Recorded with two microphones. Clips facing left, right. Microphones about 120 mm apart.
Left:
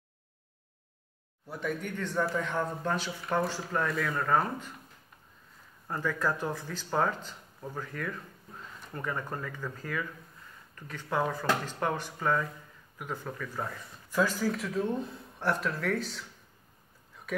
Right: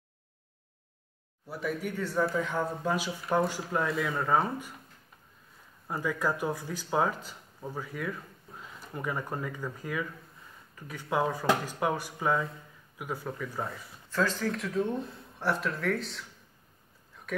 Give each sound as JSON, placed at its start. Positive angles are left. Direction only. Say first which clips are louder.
{"t": 1.5, "sound": "speech", "louder": "right 1 dB", "side_deg": -5}
{"t": 5.9, "sound": "speech", "louder": "even", "side_deg": -10}
{"t": 14.1, "sound": "speech", "louder": "left 1 dB", "side_deg": 10}
{"t": 17.3, "sound": "a sound", "louder": "even", "side_deg": 0}